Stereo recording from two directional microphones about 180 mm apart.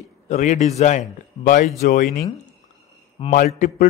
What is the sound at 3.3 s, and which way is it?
Speech, 50° left (ahead or behind).